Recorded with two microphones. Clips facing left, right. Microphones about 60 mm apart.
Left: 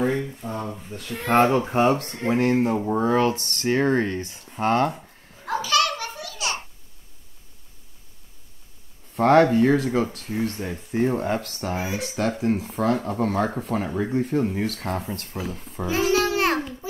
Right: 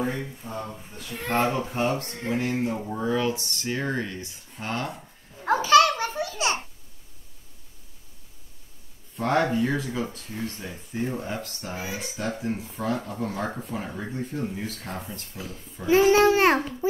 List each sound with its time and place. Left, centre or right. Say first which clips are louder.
1.1 s speech: left 6 dB; left
5.4 s a sound: right 5 dB; right
9.1 s speech: left 7 dB; left
11.7 s speech: left 5 dB; left
12.4 s speech: left 7 dB; left
15.9 s babbling: right 4 dB; right